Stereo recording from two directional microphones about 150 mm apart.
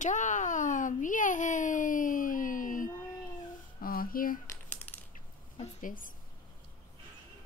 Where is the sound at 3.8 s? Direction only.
75° left (ahead or behind).